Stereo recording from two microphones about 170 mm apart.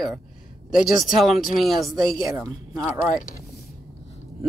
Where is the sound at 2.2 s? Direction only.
15° right (ahead or behind).